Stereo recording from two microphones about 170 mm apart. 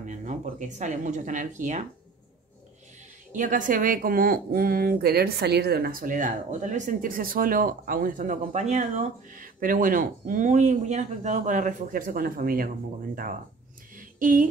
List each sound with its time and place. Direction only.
0.0 s a woman's voice: 45° right (ahead or behind)
3.3 s a woman's voice: 50° right (ahead or behind)
13.9 s a sound: 55° right (ahead or behind)